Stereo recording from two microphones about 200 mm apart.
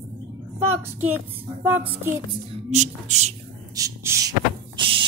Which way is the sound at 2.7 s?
35° right (ahead or behind).